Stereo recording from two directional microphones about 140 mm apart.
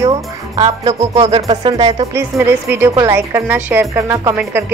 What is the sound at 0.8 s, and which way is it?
Music, 50° right (ahead or behind).